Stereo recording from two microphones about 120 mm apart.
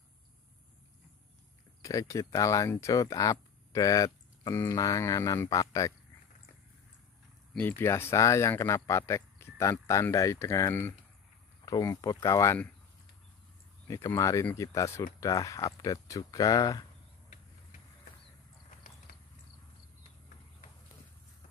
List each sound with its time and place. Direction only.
1.8 s speech: 25° left (ahead or behind)
7.5 s speech: 20° left (ahead or behind)
13.8 s speech: 25° left (ahead or behind)